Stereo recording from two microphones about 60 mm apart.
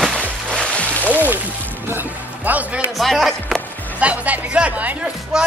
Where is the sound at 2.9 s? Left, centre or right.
Centre.